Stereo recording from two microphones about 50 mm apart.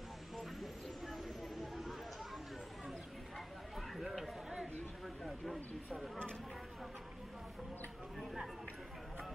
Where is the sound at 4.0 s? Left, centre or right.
Centre.